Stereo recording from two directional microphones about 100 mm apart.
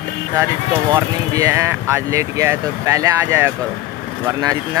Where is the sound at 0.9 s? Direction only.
30° right (ahead or behind).